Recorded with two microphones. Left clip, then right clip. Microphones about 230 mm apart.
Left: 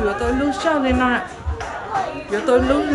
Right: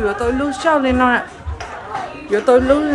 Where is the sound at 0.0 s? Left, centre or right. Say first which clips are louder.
Right 2 dB; centre.